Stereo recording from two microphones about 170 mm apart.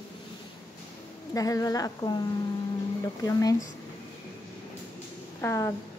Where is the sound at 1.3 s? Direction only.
20° left (ahead or behind).